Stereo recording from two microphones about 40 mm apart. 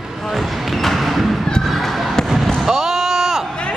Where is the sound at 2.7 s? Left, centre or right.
Centre.